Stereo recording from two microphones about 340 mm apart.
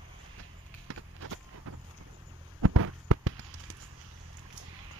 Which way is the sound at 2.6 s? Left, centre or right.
Right.